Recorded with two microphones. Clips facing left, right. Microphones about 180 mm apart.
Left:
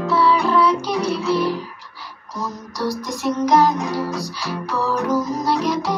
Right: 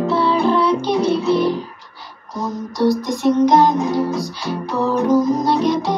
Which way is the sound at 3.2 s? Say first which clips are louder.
Right 3 dB; 20° right (ahead or behind).